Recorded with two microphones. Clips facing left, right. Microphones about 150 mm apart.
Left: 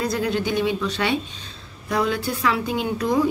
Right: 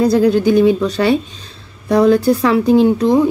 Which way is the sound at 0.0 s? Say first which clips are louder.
Right 11 dB; 35° right (ahead or behind).